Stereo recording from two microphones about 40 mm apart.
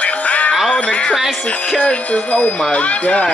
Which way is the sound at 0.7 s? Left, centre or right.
Left.